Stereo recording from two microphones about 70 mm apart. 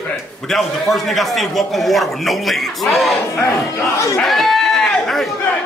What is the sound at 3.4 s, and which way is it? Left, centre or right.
Speech, left.